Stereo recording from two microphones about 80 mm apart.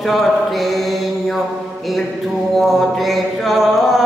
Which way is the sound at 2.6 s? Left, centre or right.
Centre.